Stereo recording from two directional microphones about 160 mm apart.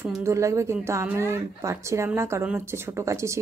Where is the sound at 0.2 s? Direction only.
20° right (ahead or behind).